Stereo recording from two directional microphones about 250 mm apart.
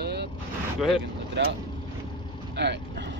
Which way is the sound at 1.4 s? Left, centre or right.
Right.